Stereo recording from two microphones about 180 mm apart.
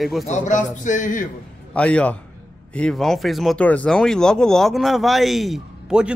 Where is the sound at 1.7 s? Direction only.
5° left (ahead or behind).